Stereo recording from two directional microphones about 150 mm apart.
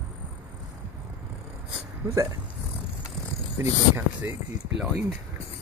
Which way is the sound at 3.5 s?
15° right (ahead or behind).